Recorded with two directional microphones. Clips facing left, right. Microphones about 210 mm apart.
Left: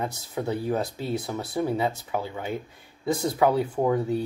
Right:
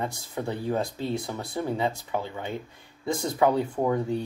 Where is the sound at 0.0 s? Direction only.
5° left (ahead or behind).